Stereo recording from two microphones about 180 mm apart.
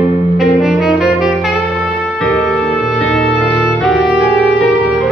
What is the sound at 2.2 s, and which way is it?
Music, 5° left (ahead or behind).